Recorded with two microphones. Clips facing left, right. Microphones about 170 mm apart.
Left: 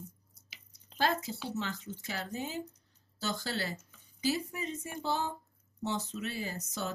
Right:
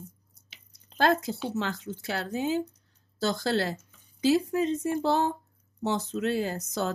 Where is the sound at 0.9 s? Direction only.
85° right.